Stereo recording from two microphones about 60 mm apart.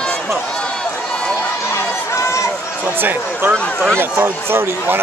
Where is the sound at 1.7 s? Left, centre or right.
Left.